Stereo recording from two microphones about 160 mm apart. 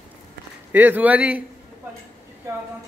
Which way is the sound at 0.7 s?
10° right (ahead or behind).